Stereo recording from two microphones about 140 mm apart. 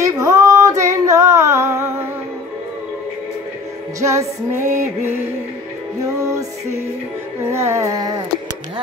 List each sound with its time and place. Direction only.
0.0 s female singing: 25° right (ahead or behind)
4.0 s music: 20° right (ahead or behind)
6.0 s music: 20° right (ahead or behind)
7.5 s music: 20° right (ahead or behind)